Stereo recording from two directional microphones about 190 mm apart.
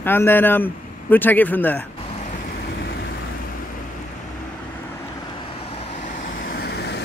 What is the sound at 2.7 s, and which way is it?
Vehicle, 60° left (ahead or behind).